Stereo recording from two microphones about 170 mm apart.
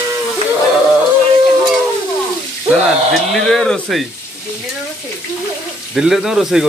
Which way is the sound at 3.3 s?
Centre (ahead or behind).